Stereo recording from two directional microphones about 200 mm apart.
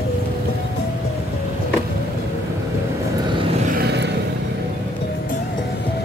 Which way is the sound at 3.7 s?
50° right (ahead or behind).